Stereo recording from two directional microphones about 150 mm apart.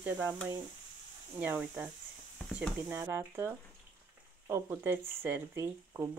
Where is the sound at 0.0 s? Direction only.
15° right (ahead or behind).